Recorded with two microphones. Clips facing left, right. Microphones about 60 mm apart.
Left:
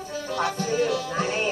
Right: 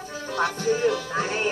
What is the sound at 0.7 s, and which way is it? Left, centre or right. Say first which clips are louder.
Speech: right 3 dB; right.